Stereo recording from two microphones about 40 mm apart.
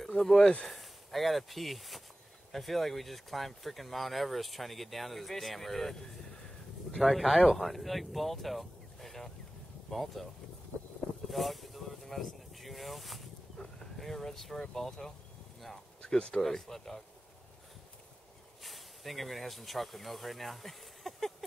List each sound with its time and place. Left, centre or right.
0.2 s speech: centre
11.2 s vehicle: centre
13.9 s speech: centre
16.0 s speech: left
16.3 s speech: centre
18.6 s speech: centre